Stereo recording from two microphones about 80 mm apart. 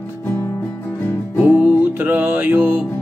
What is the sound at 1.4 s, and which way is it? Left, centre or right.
Music, right.